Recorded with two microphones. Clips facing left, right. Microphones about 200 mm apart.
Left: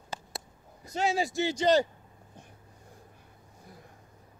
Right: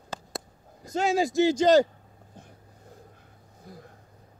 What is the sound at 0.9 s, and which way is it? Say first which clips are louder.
Speech: right 4 dB; 45° right (ahead or behind).